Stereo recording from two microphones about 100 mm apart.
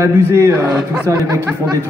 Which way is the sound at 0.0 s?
30° right (ahead or behind).